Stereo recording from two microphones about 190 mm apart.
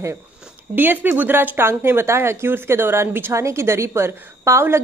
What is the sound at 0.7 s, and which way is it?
Speech, 10° right (ahead or behind).